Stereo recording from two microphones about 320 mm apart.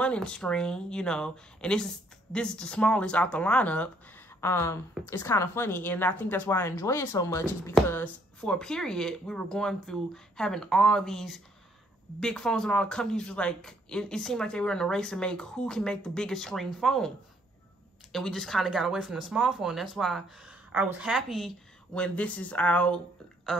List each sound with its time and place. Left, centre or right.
0.0 s a woman's voice: centre
18.1 s a woman's voice: centre